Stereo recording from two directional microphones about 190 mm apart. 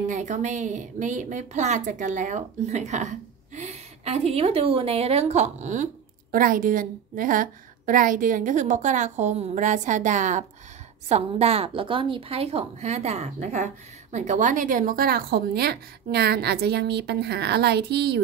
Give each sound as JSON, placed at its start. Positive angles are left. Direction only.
{"t": 0.1, "sound": "a woman's voice", "side_deg": -40}